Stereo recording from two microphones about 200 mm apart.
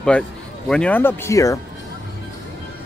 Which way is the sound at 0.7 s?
5° left (ahead or behind).